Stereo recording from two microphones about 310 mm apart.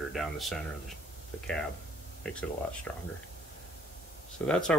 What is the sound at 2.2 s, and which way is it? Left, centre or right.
Speech, centre.